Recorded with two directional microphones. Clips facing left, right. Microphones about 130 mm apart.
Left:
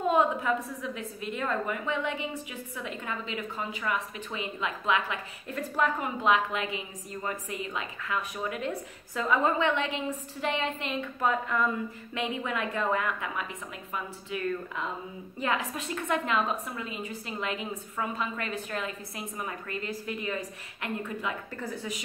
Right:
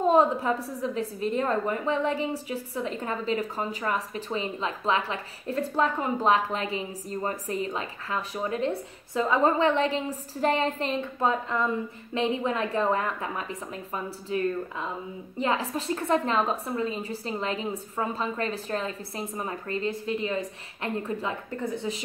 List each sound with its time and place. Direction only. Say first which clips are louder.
0.0 s a woman's voice: right 4 dB; 35° right (ahead or behind)